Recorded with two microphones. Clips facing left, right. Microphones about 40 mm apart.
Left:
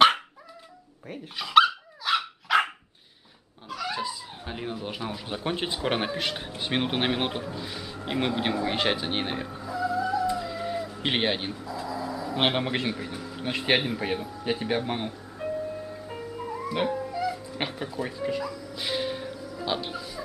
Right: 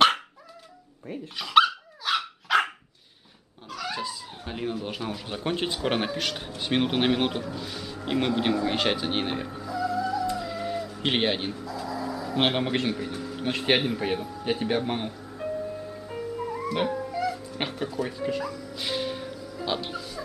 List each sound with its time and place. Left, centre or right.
1.0 s speech: centre
1.7 s dog: centre
3.6 s speech: centre
9.7 s music: left
10.4 s music: centre
11.0 s speech: centre
11.5 s speech: centre
11.9 s a sound: centre
16.6 s music: centre
17.6 s speech: centre
18.8 s music: centre